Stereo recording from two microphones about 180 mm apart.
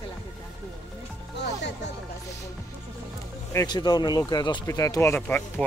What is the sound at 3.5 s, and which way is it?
Speech, 25° left (ahead or behind).